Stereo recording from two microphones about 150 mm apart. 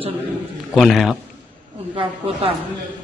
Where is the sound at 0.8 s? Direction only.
Centre (ahead or behind).